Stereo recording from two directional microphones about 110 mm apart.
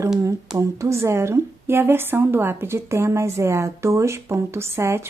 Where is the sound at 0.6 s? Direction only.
25° right (ahead or behind).